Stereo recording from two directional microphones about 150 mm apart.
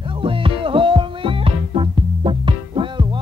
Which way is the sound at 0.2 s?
35° right (ahead or behind).